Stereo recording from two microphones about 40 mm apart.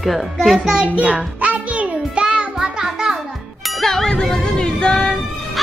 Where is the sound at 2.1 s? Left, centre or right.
Right.